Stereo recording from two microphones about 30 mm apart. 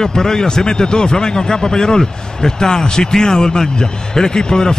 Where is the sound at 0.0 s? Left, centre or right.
Centre.